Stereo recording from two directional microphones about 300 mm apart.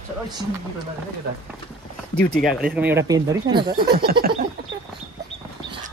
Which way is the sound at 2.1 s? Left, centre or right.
Centre.